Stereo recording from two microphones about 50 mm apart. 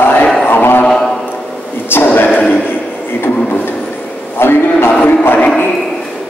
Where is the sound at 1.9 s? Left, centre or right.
Left.